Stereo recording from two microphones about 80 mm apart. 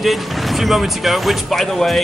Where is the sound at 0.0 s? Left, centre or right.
Centre.